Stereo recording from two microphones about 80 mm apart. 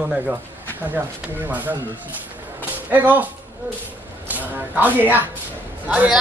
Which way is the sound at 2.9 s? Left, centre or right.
Right.